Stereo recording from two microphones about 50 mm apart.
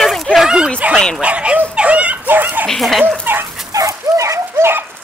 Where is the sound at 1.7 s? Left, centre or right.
Right.